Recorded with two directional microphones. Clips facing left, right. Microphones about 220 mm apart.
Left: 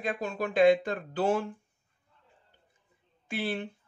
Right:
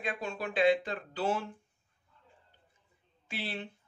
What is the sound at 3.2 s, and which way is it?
Speech, 50° left (ahead or behind).